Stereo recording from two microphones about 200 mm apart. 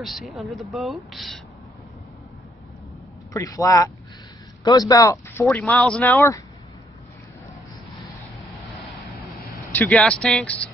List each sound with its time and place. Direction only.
0.0 s speech: centre (ahead or behind)
3.3 s speech: 15° left (ahead or behind)
9.7 s speech: 5° left (ahead or behind)